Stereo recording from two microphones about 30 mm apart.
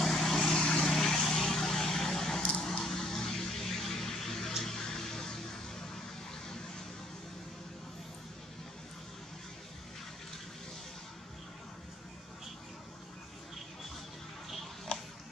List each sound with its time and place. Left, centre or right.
0.0 s vehicle: centre
2.8 s music: centre
4.6 s a sound: centre